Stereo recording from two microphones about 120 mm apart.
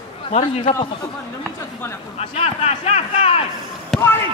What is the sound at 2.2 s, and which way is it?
A man's voice, 60° left (ahead or behind).